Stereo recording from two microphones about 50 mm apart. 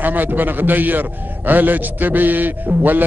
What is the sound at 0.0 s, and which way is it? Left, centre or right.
A man's voice, right.